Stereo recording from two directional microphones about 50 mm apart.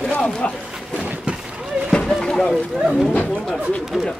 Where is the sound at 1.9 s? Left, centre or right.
Centre.